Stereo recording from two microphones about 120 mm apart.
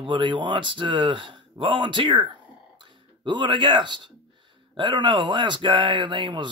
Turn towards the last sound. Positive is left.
turn(degrees=-40)  # may be behind; listen again after turning